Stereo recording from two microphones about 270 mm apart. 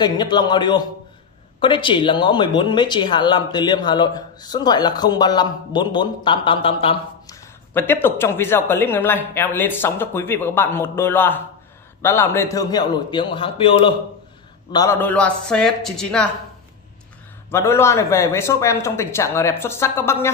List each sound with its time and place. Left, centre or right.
0.0 s speech: centre
7.7 s a man's voice: centre
17.5 s speech: centre